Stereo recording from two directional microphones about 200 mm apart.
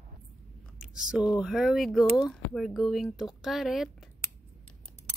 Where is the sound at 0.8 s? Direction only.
5° right (ahead or behind).